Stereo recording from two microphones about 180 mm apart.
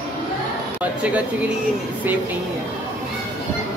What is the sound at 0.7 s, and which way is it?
Speech, 10° right (ahead or behind).